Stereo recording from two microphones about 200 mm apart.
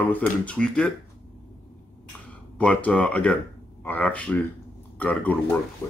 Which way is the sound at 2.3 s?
5° left (ahead or behind).